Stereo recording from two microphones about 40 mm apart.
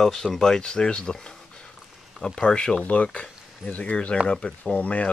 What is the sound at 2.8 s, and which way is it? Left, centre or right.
Speech, left.